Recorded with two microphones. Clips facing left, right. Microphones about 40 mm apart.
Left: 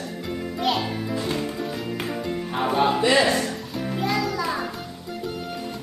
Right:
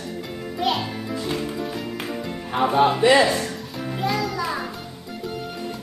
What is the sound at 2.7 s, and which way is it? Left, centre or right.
Speech, centre.